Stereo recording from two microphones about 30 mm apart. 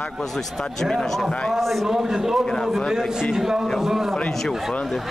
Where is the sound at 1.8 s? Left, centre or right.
Centre.